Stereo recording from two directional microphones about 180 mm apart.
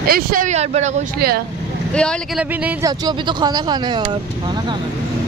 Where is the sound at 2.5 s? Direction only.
10° right (ahead or behind).